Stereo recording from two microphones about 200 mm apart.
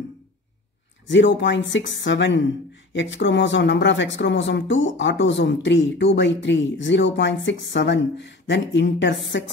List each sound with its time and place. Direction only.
1.0 s a woman's voice: 65° left (ahead or behind)